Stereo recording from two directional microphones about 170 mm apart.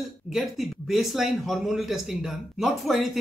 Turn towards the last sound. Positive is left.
turn(degrees=0)  # may be behind; listen again after turning